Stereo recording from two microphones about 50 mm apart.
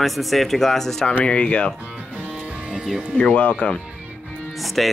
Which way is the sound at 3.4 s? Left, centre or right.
Left.